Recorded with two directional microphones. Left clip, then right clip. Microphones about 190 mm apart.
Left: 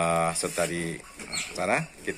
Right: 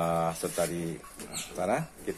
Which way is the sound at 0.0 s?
Centre (ahead or behind).